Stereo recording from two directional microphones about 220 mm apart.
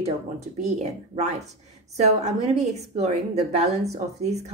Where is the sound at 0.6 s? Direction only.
30° right (ahead or behind).